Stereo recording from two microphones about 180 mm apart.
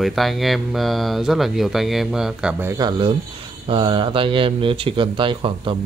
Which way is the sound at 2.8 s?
30° right (ahead or behind).